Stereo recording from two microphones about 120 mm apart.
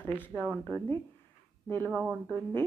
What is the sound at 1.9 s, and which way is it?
Speech, 10° right (ahead or behind).